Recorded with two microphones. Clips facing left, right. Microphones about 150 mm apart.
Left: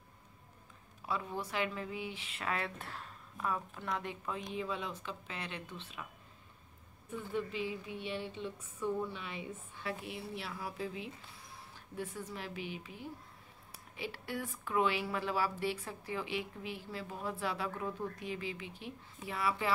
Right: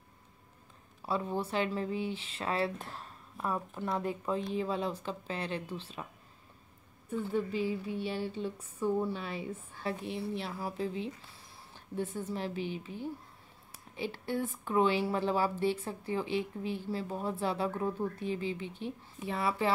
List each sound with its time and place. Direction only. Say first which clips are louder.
1.0 s speech: right 5 dB; 30° right (ahead or behind)
7.3 s speech: right 4 dB; 40° right (ahead or behind)